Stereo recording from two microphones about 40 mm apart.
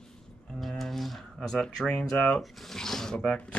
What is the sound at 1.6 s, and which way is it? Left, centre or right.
Speech, left.